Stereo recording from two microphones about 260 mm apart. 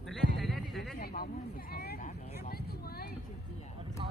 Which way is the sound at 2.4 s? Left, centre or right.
Left.